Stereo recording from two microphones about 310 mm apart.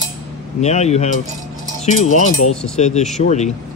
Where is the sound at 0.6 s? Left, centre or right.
Left.